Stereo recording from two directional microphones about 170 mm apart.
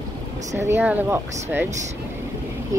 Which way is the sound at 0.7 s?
10° right (ahead or behind).